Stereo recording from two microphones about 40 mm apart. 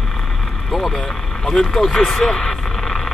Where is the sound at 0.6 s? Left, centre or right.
Centre.